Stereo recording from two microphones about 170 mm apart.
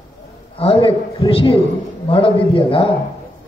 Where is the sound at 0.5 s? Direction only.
35° left (ahead or behind).